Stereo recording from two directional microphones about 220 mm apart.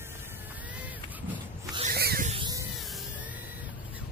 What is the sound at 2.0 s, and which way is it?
Snake, 45° right (ahead or behind).